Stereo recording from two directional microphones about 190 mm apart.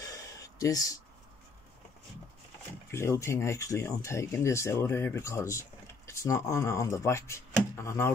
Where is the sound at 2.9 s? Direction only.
15° left (ahead or behind).